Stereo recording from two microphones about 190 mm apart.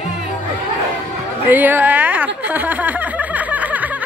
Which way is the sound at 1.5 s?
10° right (ahead or behind).